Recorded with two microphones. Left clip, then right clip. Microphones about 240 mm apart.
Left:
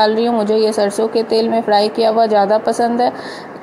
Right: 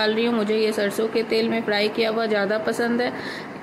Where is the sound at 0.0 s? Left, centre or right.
Centre.